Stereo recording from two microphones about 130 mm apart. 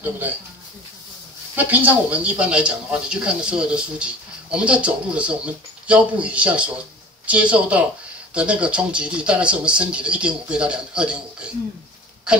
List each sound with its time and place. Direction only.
1.5 s speech: 15° right (ahead or behind)